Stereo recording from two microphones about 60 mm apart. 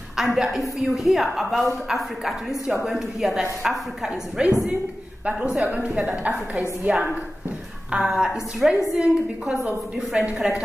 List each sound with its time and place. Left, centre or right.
0.1 s a woman's voice: centre
4.1 s a woman's voice: centre
7.9 s a woman's voice: centre
8.9 s a woman's voice: centre